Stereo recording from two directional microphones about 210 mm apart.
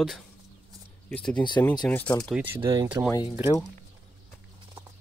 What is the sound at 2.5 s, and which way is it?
Speech, 25° right (ahead or behind).